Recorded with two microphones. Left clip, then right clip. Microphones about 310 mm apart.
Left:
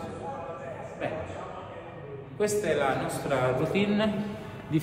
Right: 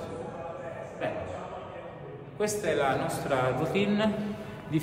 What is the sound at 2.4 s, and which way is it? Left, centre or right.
A man's voice, centre.